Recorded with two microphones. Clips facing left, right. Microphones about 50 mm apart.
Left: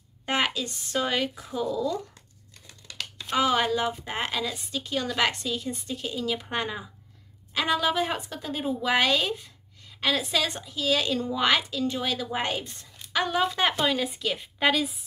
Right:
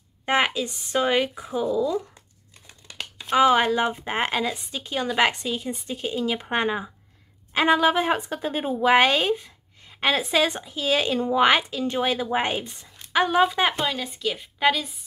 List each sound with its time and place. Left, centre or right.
0.2 s a woman's voice: right
13.8 s a woman's voice: centre